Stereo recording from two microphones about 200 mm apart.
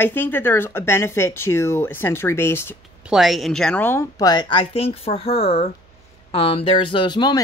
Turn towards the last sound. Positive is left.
turn(degrees=20)  # may be behind; listen again after turning